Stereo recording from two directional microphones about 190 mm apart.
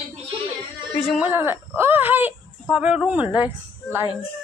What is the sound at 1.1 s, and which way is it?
A woman's voice, 10° right (ahead or behind).